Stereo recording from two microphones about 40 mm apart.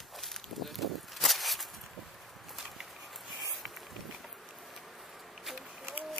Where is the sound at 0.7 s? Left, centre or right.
Centre.